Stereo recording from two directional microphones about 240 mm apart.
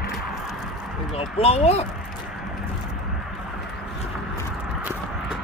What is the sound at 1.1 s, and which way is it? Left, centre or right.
Speech, left.